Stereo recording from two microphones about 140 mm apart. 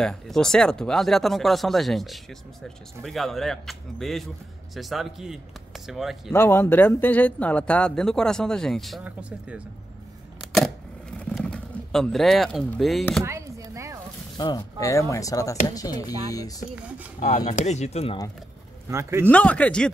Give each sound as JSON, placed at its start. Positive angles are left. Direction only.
{"t": 0.0, "sound": "speech", "side_deg": 5}
{"t": 6.3, "sound": "speech", "side_deg": 15}
{"t": 10.4, "sound": "a sound", "side_deg": 0}
{"t": 11.1, "sound": "pigeon", "side_deg": 5}
{"t": 13.2, "sound": "a sound", "side_deg": -20}
{"t": 14.3, "sound": "speech", "side_deg": 30}
{"t": 17.5, "sound": "speech", "side_deg": 60}
{"t": 18.9, "sound": "speech", "side_deg": -20}
{"t": 19.2, "sound": "speech", "side_deg": 10}